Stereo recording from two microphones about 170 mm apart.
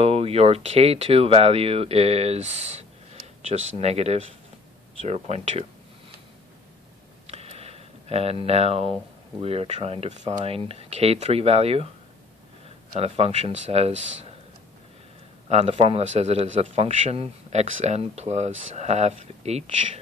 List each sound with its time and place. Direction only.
0.0 s a man's voice: 35° right (ahead or behind)
7.2 s a sound: 35° right (ahead or behind)
9.4 s a man's voice: 35° right (ahead or behind)
13.0 s a man's voice: 35° right (ahead or behind)
15.4 s a man's voice: 35° right (ahead or behind)